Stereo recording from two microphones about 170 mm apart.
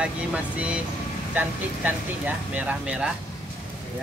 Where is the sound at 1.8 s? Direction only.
10° right (ahead or behind).